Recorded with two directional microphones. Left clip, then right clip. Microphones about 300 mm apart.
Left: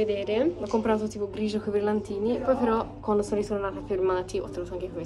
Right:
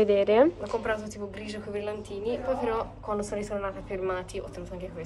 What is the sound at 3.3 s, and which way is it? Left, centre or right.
Speech, centre.